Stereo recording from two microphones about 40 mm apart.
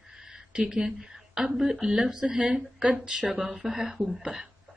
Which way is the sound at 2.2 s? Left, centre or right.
Right.